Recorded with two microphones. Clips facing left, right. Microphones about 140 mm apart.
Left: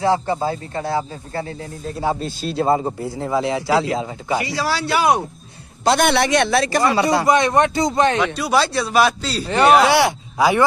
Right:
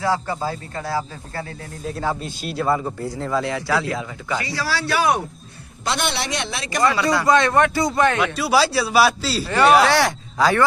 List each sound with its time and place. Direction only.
0.0 s speech: 25° left (ahead or behind)
5.9 s speech: 50° left (ahead or behind)
6.8 s speech: 25° left (ahead or behind)
8.4 s a man's voice: 5° right (ahead or behind)
9.5 s speech: 15° left (ahead or behind)